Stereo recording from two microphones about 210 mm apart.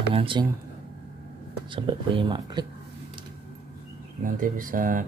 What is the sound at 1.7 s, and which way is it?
Speech, 25° right (ahead or behind).